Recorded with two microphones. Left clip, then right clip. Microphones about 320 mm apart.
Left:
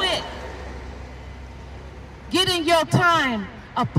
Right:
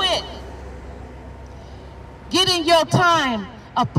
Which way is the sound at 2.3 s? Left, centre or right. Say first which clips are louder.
Right 3 dB; centre.